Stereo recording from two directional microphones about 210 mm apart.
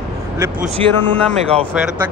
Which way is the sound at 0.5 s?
30° right (ahead or behind).